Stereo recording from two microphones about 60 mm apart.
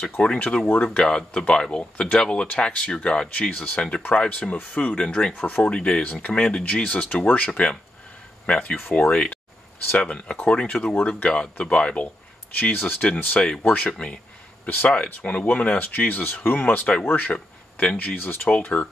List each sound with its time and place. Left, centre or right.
0.2 s speech: centre
5.3 s speech: left
8.7 s speech: left
9.1 s speech: centre
15.0 s speech: left